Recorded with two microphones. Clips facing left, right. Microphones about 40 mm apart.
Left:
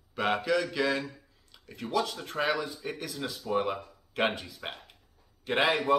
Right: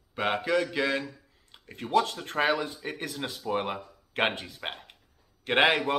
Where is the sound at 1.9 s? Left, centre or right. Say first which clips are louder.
Right 5 dB; right.